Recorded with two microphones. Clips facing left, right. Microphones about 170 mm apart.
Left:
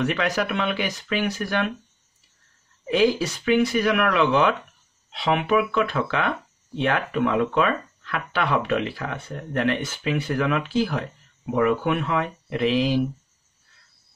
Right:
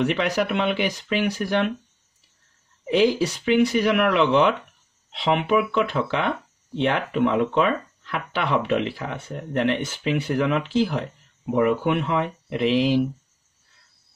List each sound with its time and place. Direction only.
0.0 s speech: 20° right (ahead or behind)
3.4 s speech: 25° right (ahead or behind)